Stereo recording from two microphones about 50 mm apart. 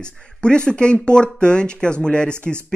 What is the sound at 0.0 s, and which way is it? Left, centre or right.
Speech, centre.